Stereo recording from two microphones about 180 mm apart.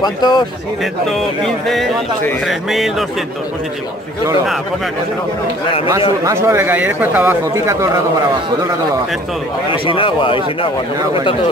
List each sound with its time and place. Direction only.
0.0 s speech: 25° left (ahead or behind)
1.4 s speech: centre (ahead or behind)
6.2 s speech: 15° right (ahead or behind)
9.7 s speech: 30° left (ahead or behind)